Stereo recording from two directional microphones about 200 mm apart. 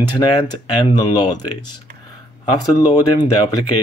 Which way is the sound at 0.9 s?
20° left (ahead or behind).